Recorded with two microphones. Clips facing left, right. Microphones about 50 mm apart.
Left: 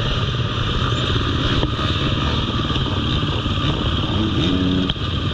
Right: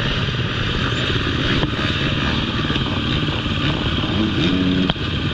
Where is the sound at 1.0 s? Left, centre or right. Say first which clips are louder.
Right 1 dB; right.